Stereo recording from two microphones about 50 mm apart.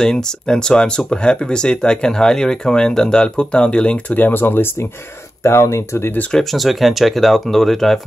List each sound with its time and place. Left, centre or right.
0.0 s speech: centre
4.1 s speech: left
5.4 s speech: left
6.5 s speech: centre